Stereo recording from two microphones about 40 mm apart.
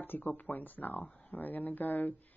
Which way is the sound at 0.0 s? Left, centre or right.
Left.